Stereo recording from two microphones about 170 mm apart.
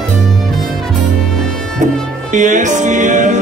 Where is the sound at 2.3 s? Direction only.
45° right (ahead or behind).